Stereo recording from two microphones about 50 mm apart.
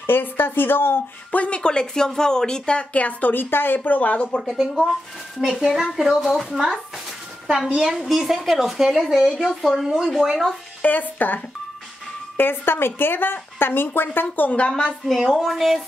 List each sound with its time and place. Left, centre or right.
0.0 s speech: left
1.3 s speech: left
4.4 s a woman's voice: centre
10.3 s a woman's voice: centre
10.8 s speech: left
12.4 s speech: left
14.2 s speech: left
14.7 s a woman's voice: centre